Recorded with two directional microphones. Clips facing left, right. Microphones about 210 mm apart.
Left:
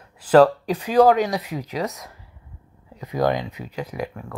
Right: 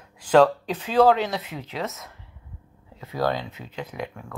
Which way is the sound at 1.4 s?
40° left (ahead or behind).